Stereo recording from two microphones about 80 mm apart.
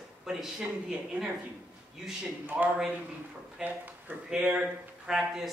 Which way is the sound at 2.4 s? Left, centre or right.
Right.